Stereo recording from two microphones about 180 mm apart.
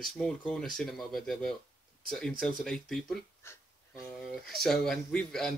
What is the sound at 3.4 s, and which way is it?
Wheeze, 15° left (ahead or behind).